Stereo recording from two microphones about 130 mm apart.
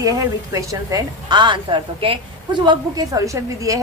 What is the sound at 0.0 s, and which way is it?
A woman's voice, 25° right (ahead or behind).